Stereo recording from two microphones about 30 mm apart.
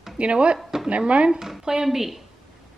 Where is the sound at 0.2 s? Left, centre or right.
Right.